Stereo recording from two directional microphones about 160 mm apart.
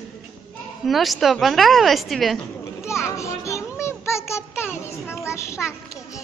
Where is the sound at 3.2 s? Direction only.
20° left (ahead or behind).